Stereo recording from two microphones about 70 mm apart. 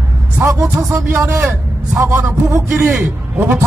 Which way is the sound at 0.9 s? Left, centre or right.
Right.